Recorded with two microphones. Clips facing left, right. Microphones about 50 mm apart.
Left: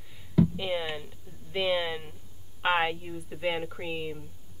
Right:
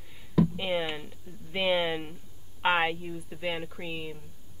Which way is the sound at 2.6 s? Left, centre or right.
Centre.